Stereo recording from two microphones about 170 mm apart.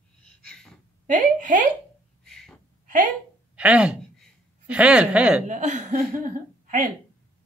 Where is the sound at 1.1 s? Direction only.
50° right (ahead or behind).